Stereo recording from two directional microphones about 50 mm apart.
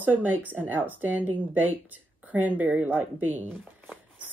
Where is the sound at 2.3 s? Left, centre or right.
Right.